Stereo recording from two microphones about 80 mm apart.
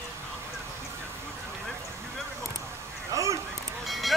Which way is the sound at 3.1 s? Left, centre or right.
Right.